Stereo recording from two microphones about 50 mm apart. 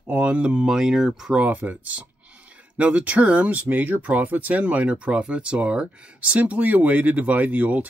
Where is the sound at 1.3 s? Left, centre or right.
Right.